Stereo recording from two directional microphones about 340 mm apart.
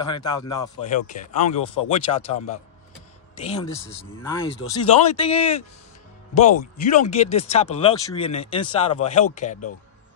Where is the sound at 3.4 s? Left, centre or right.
Centre.